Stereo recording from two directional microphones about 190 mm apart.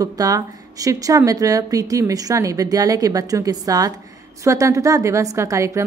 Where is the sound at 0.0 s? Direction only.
20° right (ahead or behind).